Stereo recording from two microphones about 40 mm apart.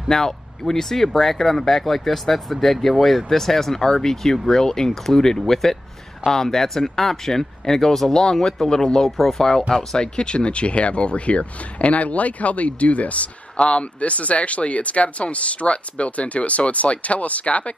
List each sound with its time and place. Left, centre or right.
0.1 s speech: centre
10.1 s speech: left